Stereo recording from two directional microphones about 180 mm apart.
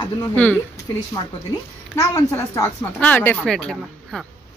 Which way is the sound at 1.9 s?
15° left (ahead or behind).